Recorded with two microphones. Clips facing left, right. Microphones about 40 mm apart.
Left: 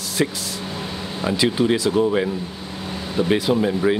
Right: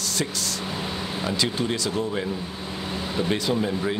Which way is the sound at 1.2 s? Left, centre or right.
Centre.